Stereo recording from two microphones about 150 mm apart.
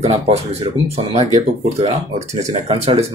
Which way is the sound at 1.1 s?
45° right (ahead or behind).